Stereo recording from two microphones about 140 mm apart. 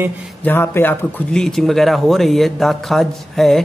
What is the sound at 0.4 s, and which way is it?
Speech, 15° left (ahead or behind).